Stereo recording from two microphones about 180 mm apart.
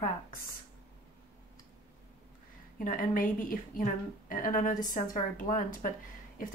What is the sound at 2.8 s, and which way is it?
A woman's voice, 50° left (ahead or behind).